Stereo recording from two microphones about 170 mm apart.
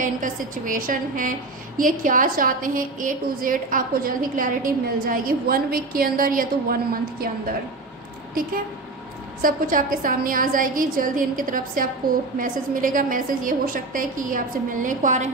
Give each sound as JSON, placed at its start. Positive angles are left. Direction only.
{"t": 0.0, "sound": "a woman's voice", "side_deg": -50}
{"t": 9.4, "sound": "a woman's voice", "side_deg": -55}